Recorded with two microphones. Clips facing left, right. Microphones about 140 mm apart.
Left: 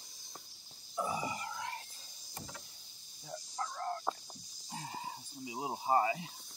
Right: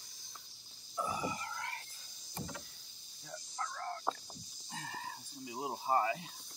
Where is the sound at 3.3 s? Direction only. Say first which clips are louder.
Left 2 dB; 15° left (ahead or behind).